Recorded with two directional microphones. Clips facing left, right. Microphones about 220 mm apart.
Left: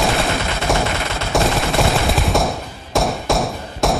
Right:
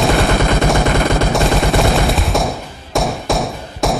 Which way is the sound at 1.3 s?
Centre (ahead or behind).